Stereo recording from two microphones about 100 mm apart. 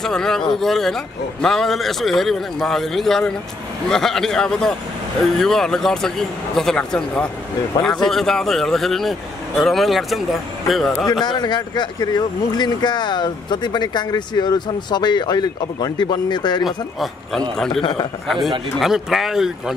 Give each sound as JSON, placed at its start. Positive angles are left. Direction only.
{"t": 0.0, "sound": "a man's voice", "side_deg": 5}
{"t": 11.2, "sound": "speech", "side_deg": 45}
{"t": 16.6, "sound": "a man's voice", "side_deg": 0}
{"t": 18.8, "sound": "a man's voice", "side_deg": 0}